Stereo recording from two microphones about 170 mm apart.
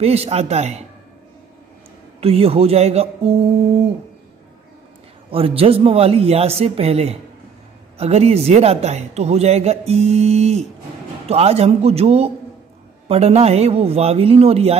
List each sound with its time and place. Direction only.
0.0 s a man's voice: 35° right (ahead or behind)
2.1 s a man's voice: 35° right (ahead or behind)
5.3 s a man's voice: 35° right (ahead or behind)